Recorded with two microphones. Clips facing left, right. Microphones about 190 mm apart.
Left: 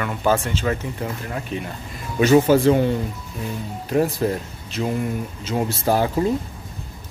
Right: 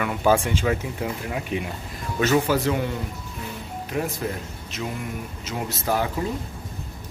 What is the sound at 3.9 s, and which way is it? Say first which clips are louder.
Speech: left 8 dB; 35° left (ahead or behind).